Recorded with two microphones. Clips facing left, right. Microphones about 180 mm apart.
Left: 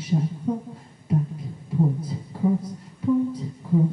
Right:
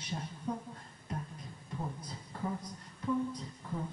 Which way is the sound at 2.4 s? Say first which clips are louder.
Left 15 dB; 25° left (ahead or behind).